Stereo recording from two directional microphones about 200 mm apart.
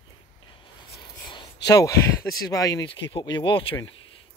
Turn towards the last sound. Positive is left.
turn(degrees=25)  # may be behind; listen again after turning